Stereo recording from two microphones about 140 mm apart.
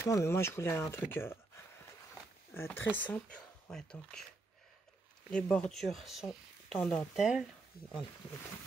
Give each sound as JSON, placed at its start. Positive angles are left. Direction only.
{"t": 0.0, "sound": "speech", "side_deg": 20}
{"t": 2.5, "sound": "speech", "side_deg": 15}
{"t": 5.3, "sound": "speech", "side_deg": 5}